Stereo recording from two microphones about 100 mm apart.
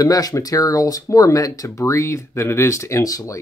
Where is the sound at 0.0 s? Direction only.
35° left (ahead or behind).